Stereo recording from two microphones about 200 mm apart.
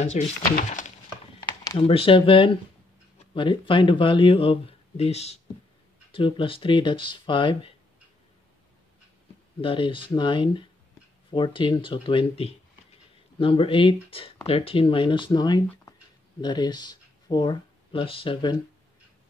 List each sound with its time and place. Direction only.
0.0 s speech: 35° left (ahead or behind)
1.5 s speech: 20° left (ahead or behind)
9.6 s speech: 25° left (ahead or behind)